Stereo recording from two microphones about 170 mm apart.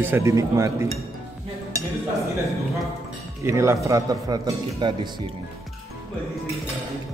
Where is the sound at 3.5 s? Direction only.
15° right (ahead or behind).